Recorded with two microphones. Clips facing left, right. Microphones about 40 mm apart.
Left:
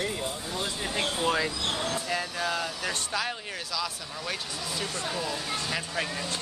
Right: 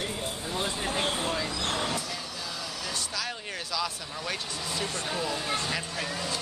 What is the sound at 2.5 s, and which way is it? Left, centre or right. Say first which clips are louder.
Vehicle: left 5 dB; left.